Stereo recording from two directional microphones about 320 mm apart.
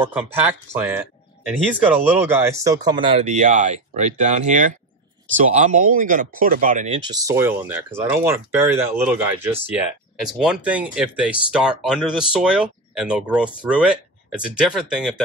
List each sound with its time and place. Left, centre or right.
0.1 s speech: centre; by 7.0 s right
7.1 s speech: centre